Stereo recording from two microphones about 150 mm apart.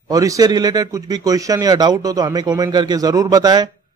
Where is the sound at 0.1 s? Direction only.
25° right (ahead or behind).